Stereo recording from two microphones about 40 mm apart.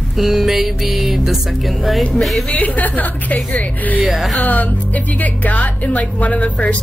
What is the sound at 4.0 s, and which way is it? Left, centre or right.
Speech, centre.